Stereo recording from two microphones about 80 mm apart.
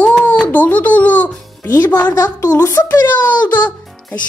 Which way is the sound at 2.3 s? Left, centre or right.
Left.